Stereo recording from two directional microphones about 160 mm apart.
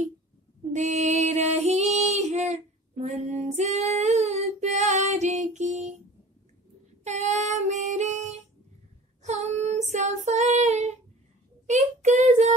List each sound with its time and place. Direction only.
0.7 s female singing: 45° right (ahead or behind)
7.1 s female singing: 45° right (ahead or behind)
9.2 s child singing: 45° right (ahead or behind)